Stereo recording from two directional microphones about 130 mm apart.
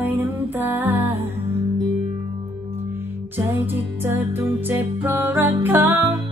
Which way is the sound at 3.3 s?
15° right (ahead or behind).